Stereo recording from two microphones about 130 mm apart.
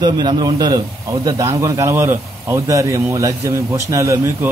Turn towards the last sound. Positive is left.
turn(degrees=-20)  # may be behind; listen again after turning